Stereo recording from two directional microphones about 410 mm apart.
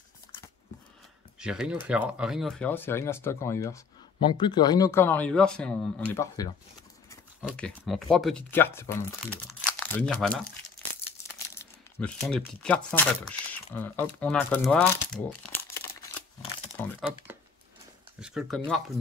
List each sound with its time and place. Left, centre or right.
1.4 s speech: centre
11.3 s speech: centre